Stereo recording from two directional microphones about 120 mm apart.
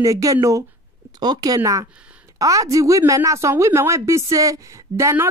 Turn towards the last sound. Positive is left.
turn(degrees=-25)  # may be behind; listen again after turning